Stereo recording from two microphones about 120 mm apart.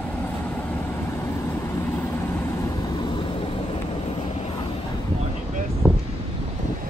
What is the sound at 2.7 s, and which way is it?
Vehicle, 35° left (ahead or behind).